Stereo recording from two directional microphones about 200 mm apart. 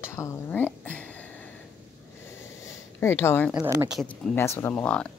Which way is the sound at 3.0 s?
10° left (ahead or behind).